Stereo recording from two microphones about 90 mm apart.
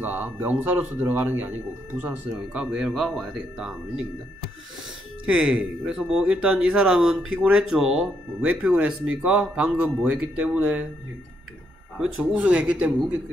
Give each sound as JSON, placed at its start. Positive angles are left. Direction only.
{"t": 0.0, "sound": "speech", "side_deg": -20}
{"t": 2.9, "sound": "speech", "side_deg": 0}
{"t": 5.2, "sound": "speech", "side_deg": -10}
{"t": 12.0, "sound": "speech", "side_deg": -10}